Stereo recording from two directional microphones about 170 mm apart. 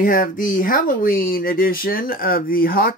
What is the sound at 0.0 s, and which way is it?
Speech, 55° left (ahead or behind).